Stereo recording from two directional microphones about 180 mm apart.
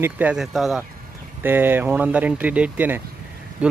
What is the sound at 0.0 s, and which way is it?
Speech, 5° right (ahead or behind).